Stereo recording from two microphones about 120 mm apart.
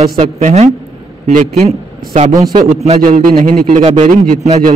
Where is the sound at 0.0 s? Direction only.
85° right.